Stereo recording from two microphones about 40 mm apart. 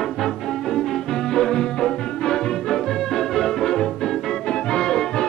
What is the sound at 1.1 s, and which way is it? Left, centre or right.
Music, centre.